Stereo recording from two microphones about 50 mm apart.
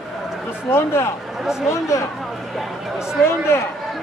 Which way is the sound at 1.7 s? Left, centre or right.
Left.